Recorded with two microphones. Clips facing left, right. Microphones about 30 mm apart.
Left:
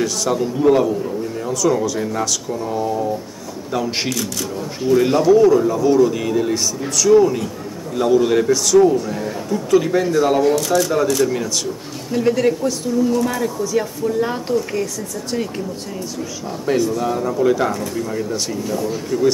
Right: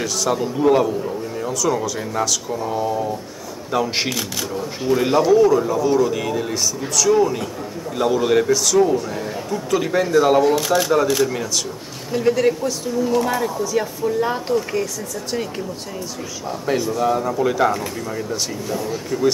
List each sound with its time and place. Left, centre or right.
0.0 s speech: centre
4.1 s a man's voice: centre
4.6 s a man's voice: centre
13.1 s speech: centre
13.4 s speech: centre
16.6 s speech: centre